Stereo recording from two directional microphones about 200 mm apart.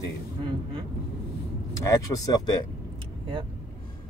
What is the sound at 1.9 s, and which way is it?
Speech, 20° left (ahead or behind).